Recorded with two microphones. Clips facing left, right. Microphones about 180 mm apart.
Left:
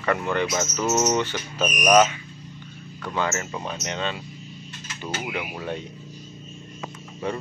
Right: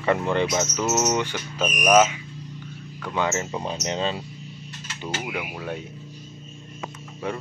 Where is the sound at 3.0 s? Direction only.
15° right (ahead or behind); by 4.2 s 30° right (ahead or behind).